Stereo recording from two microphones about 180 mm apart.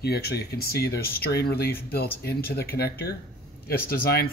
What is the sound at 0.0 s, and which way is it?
Speech, 60° left (ahead or behind).